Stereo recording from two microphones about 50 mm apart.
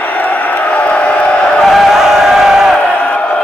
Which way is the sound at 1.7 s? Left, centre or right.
Centre.